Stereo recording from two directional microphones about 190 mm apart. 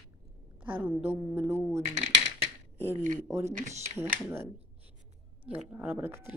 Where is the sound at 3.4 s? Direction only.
35° right (ahead or behind).